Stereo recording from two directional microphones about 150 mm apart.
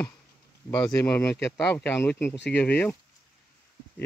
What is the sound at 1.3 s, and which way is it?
Speech, 10° left (ahead or behind).